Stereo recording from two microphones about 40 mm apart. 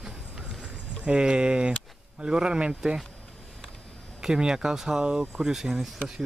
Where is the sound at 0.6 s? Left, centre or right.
Right.